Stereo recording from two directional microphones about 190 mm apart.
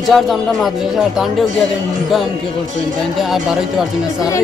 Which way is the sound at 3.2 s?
Centre (ahead or behind).